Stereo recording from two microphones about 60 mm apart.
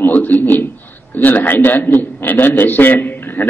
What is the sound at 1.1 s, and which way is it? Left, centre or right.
A man's voice, left.